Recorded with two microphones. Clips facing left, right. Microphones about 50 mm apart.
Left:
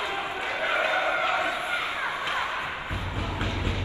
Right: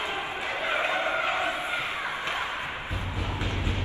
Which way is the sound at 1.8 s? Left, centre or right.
Left.